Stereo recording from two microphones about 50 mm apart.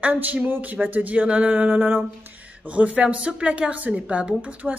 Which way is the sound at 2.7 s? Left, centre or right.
Right.